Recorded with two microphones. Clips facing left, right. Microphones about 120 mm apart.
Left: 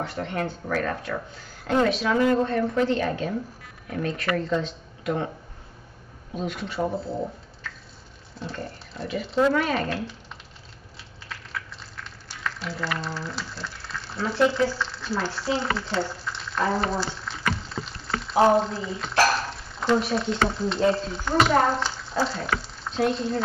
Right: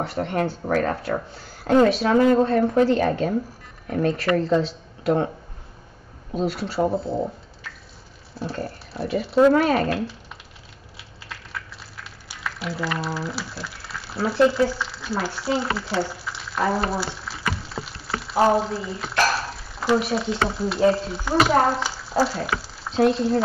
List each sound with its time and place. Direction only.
0.1 s a woman's voice: 35° right (ahead or behind)
6.3 s a woman's voice: 35° right (ahead or behind)
8.5 s a woman's voice: 35° right (ahead or behind)
11.2 s a sound: 5° right (ahead or behind)
14.2 s speech: 10° right (ahead or behind)
14.7 s a sound: 10° right (ahead or behind)
18.4 s speech: 5° right (ahead or behind)
22.5 s frying: 5° right (ahead or behind)
23.0 s speech: 5° right (ahead or behind)